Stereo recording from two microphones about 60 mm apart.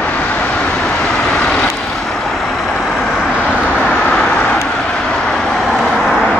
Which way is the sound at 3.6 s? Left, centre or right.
Left.